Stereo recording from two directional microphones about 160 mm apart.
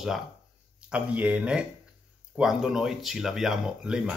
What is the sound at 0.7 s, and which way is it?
Speech, 5° right (ahead or behind).